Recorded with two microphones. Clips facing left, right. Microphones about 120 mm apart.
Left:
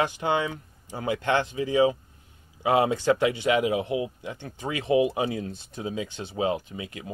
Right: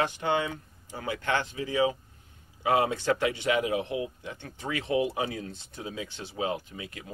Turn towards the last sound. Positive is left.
turn(degrees=15)  # may be behind; listen again after turning